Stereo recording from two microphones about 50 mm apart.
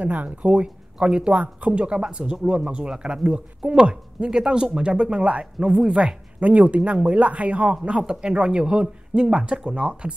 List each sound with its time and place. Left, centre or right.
0.0 s speech: right